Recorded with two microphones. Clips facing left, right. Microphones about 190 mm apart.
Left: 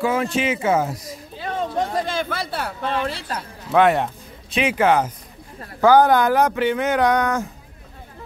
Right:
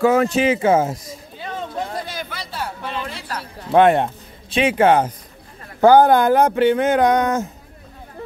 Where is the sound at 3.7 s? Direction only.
30° right (ahead or behind).